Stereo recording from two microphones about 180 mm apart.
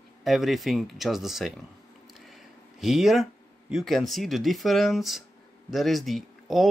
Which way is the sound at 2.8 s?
Centre (ahead or behind).